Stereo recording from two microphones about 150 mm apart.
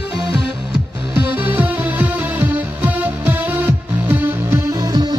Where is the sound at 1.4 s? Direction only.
10° right (ahead or behind).